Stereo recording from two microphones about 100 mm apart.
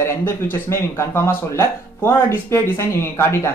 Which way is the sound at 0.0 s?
25° left (ahead or behind).